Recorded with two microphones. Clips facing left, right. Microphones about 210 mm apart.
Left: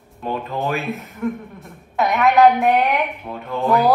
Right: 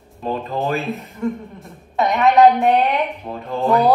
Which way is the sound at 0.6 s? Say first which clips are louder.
Right 1 dB; centre (ahead or behind).